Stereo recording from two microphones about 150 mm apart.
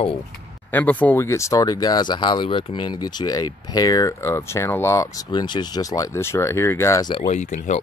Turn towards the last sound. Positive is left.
turn(degrees=50)  # may be behind; listen again after turning